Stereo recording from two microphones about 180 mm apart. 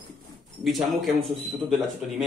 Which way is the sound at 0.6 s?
Centre (ahead or behind).